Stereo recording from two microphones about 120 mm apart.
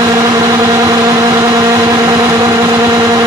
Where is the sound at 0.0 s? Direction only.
30° right (ahead or behind).